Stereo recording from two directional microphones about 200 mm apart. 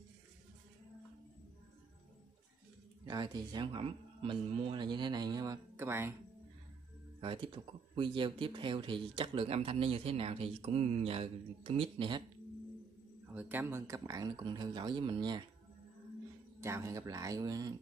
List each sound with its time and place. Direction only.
3.1 s speech: 20° right (ahead or behind)
7.2 s speech: 25° right (ahead or behind)
13.3 s speech: 10° right (ahead or behind)
16.6 s speech: 15° right (ahead or behind)